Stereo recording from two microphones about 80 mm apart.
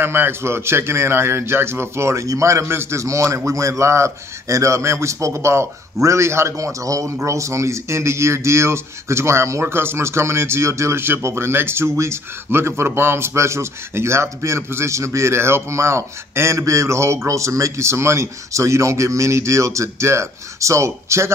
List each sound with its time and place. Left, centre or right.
0.0 s a man's voice: right